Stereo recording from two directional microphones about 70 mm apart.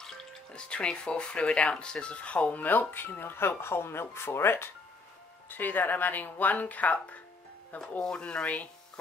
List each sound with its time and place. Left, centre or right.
0.0 s speech: centre